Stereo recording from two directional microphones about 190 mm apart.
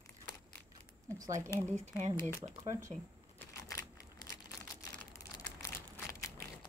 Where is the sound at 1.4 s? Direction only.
10° left (ahead or behind).